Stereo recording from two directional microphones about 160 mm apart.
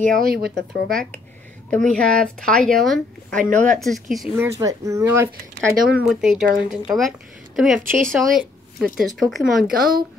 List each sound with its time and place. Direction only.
0.1 s speech: 65° right (ahead or behind)
1.7 s speech: 5° left (ahead or behind)
3.4 s speech: 55° right (ahead or behind)
3.8 s speech: centre (ahead or behind)
4.4 s speech: 20° right (ahead or behind)
6.0 s speech: 5° right (ahead or behind)
9.7 s a woman's voice: 65° right (ahead or behind)